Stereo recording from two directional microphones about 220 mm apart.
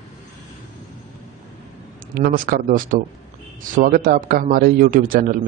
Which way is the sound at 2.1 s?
40° right (ahead or behind).